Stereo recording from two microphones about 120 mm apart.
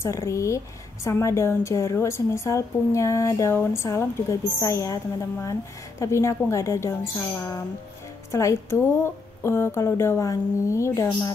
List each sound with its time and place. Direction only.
0.0 s a woman's voice: 25° left (ahead or behind)
8.3 s a woman's voice: 25° left (ahead or behind)